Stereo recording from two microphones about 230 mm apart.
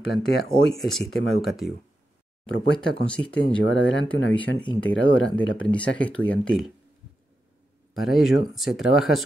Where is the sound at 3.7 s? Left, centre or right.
Left.